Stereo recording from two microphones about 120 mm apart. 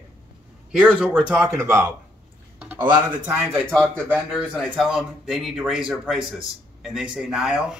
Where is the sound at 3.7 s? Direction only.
5° left (ahead or behind).